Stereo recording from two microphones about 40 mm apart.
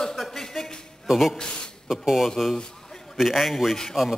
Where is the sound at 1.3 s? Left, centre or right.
Left.